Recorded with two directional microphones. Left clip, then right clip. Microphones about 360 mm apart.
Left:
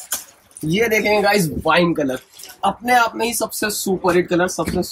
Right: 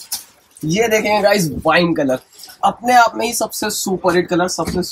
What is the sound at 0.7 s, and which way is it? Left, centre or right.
Speech, centre.